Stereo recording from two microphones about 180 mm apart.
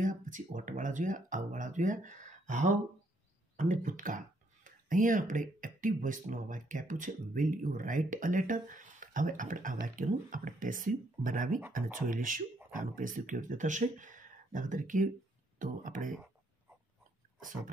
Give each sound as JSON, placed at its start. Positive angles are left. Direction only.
{"t": 0.0, "sound": "speech", "side_deg": -45}